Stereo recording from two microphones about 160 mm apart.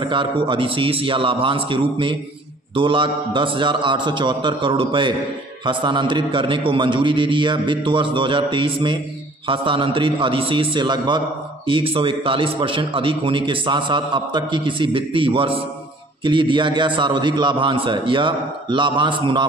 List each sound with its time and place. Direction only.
0.0 s a man's voice: 30° right (ahead or behind)